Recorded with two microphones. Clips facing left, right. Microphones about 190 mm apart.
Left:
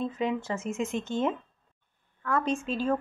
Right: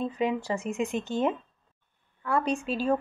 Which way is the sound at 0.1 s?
10° right (ahead or behind).